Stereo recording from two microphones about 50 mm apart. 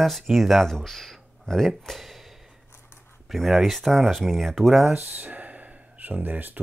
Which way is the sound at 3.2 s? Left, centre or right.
Centre.